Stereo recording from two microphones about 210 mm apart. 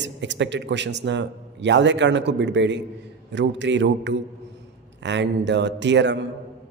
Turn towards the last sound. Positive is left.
turn(degrees=-55)  # may be behind; listen again after turning